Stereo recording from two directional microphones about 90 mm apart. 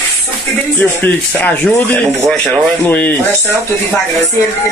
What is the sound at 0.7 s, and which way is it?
Speech, 20° left (ahead or behind).